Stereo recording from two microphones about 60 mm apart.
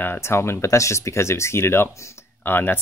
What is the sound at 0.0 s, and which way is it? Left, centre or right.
Speech, left.